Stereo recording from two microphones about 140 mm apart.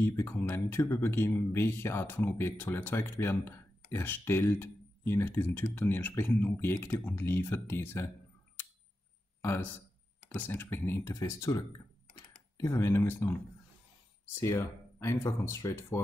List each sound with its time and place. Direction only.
0.0 s speech: 15° left (ahead or behind)
9.4 s a man's voice: 15° left (ahead or behind)
12.6 s speech: 20° left (ahead or behind)
14.3 s speech: 20° left (ahead or behind)